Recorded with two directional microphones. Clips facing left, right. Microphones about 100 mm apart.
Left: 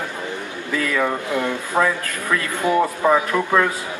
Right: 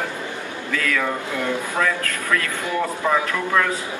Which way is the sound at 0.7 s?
20° left (ahead or behind).